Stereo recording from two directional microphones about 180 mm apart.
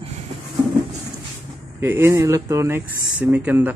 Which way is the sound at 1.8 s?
15° right (ahead or behind).